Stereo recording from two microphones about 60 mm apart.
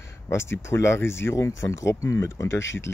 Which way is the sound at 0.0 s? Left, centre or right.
Left.